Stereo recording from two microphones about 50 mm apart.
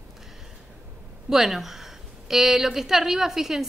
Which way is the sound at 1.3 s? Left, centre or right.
Centre.